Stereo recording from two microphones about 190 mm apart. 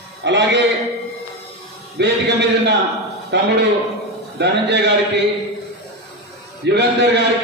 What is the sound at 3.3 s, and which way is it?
Speech, 65° right (ahead or behind).